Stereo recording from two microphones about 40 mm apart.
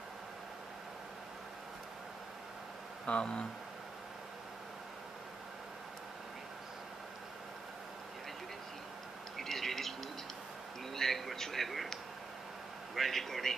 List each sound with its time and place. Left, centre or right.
3.1 s speech: left
9.4 s a sound: centre
12.9 s a man's voice: centre